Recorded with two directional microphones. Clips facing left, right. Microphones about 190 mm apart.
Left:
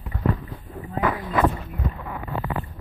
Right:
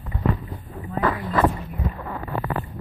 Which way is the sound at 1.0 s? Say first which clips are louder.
Right 1 dB; 10° left (ahead or behind).